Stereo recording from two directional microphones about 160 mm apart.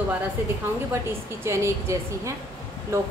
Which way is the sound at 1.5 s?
20° right (ahead or behind).